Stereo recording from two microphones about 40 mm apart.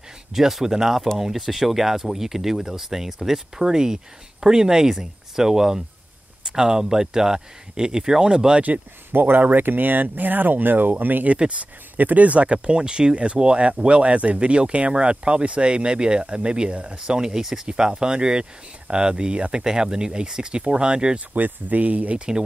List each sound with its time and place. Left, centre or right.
0.3 s speech: centre
9.1 s speech: right
11.3 s speech: right
12.0 s speech: right
21.3 s speech: right